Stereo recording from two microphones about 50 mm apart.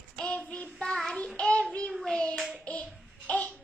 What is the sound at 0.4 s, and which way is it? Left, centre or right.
Child singing, left.